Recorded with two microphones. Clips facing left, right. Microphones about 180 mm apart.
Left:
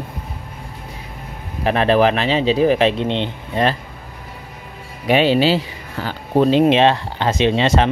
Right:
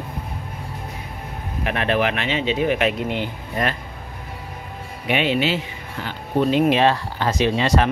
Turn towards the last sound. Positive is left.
turn(degrees=25)  # may be behind; listen again after turning